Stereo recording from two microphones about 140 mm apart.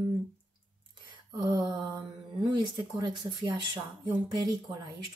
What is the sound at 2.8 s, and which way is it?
Speech, 35° right (ahead or behind).